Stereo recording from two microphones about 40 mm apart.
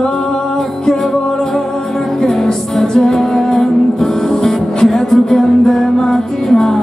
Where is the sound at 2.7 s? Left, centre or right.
Centre.